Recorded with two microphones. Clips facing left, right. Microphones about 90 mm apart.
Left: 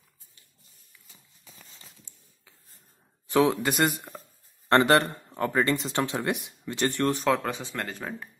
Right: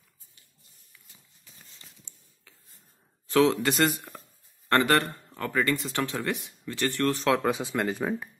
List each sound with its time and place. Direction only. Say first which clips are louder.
3.3 s speech: right 1 dB; 10° left (ahead or behind)
4.6 s speech: left 3 dB; 25° left (ahead or behind)
7.2 s speech: right 3 dB; centre (ahead or behind)
7.5 s speech: right 6 dB; 15° right (ahead or behind)